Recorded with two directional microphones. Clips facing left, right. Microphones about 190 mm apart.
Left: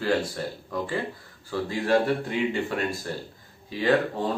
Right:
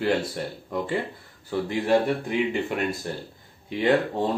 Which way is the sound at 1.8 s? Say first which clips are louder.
Even; 15° right (ahead or behind).